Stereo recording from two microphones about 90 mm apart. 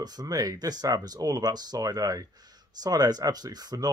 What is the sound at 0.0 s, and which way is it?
Speech, 45° right (ahead or behind).